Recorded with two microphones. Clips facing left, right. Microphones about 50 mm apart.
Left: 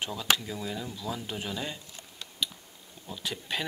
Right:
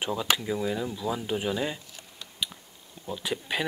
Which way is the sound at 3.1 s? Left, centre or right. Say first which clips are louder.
Right 4 dB; centre.